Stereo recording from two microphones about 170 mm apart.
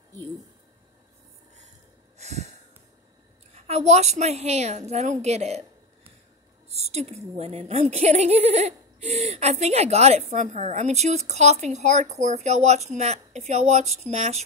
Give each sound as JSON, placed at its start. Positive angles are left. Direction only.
{"t": 2.1, "sound": "wheeze", "side_deg": -40}
{"t": 3.5, "sound": "speech", "side_deg": -40}
{"t": 6.7, "sound": "a sound", "side_deg": -40}
{"t": 7.3, "sound": "speech", "side_deg": -35}